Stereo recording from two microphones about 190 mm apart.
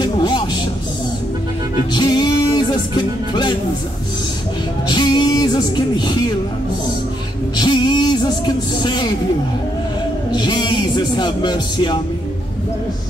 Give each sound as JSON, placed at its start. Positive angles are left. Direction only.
{"t": 0.0, "sound": "vehicle", "side_deg": 20}
{"t": 2.0, "sound": "music", "side_deg": 20}
{"t": 4.8, "sound": "speech", "side_deg": 20}
{"t": 7.5, "sound": "speech", "side_deg": 25}
{"t": 10.3, "sound": "speech", "side_deg": 20}